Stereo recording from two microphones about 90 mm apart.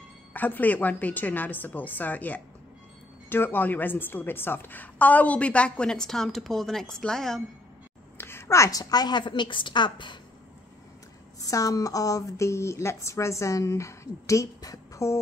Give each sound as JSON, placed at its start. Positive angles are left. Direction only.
{"t": 0.3, "sound": "a woman's voice", "side_deg": 20}
{"t": 8.2, "sound": "a woman's voice", "side_deg": 25}
{"t": 11.4, "sound": "speech", "side_deg": 40}